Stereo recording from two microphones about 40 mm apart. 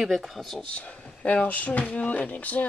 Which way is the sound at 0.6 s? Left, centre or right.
Left.